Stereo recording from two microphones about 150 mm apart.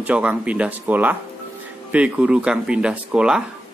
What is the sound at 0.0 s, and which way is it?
A man's voice, 10° right (ahead or behind).